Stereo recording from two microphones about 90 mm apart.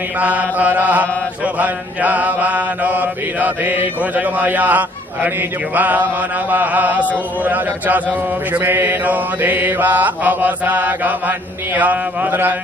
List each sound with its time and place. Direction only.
0.2 s mantra: 15° right (ahead or behind)
5.8 s speech: 20° right (ahead or behind)